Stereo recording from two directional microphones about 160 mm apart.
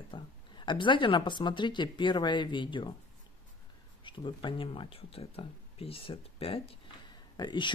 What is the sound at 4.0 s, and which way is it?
Speech, 30° left (ahead or behind).